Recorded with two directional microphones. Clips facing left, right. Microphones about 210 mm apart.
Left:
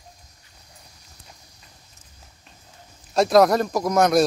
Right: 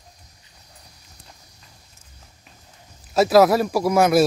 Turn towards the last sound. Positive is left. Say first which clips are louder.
# right 2 dB
turn(degrees=-5)  # may be behind; listen again after turning